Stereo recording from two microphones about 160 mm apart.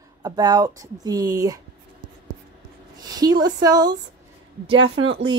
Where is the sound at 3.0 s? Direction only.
25° right (ahead or behind).